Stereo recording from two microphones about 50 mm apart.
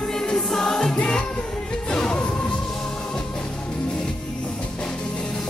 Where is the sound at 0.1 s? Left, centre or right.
Centre.